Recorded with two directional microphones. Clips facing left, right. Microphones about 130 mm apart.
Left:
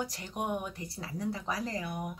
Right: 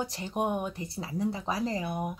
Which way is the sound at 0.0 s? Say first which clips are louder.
Right 5 dB; 25° right (ahead or behind).